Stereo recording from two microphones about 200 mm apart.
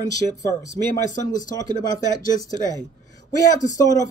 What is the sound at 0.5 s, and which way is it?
Speech, 15° left (ahead or behind).